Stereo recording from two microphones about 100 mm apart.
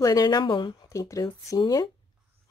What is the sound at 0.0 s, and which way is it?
Speech, 40° left (ahead or behind).